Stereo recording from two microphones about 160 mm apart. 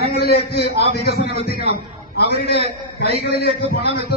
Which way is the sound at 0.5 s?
90° left.